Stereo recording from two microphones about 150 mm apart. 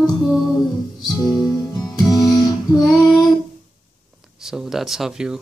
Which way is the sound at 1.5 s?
30° left (ahead or behind).